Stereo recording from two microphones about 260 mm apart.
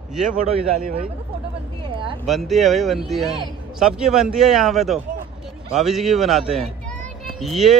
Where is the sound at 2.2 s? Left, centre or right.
Centre.